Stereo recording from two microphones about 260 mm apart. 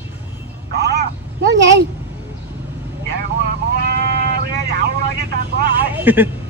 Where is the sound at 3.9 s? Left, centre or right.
Right.